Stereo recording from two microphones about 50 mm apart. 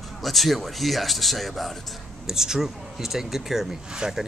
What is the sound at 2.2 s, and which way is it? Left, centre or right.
Speech, centre.